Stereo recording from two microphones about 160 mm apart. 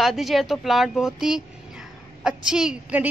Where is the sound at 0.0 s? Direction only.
Centre (ahead or behind).